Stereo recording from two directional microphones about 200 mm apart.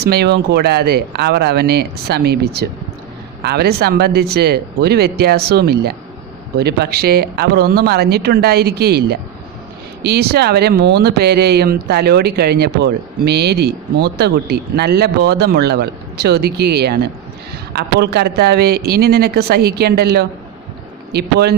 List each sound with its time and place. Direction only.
0.0 s speech: 55° right (ahead or behind)